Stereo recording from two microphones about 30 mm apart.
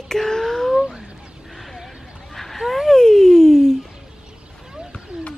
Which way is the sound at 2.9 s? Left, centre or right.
Centre.